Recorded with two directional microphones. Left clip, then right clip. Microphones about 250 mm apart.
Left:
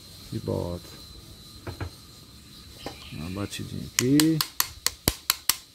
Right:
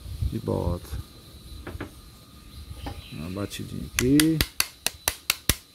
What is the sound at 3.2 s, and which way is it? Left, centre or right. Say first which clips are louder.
Speech: right 1 dB; centre.